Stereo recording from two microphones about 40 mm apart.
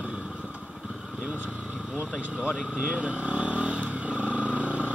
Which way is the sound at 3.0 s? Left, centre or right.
Right.